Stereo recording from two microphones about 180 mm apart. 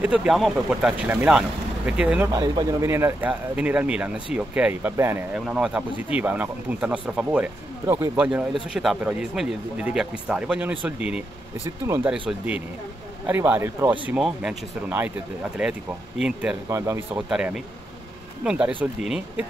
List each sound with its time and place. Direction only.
0.0 s speech: 5° right (ahead or behind)
2.2 s speech: 20° right (ahead or behind)
8.7 s speech: 5° right (ahead or behind)
16.6 s speech: 15° right (ahead or behind)